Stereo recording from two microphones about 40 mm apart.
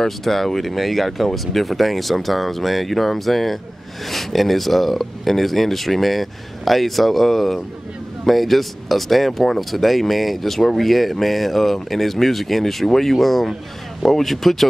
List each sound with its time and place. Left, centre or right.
0.0 s speech: centre